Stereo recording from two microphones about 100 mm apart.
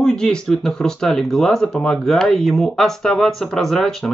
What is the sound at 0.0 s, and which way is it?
Speech, 5° left (ahead or behind).